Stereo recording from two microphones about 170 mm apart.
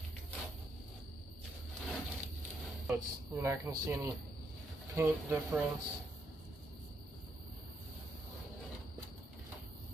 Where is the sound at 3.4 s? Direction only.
15° right (ahead or behind).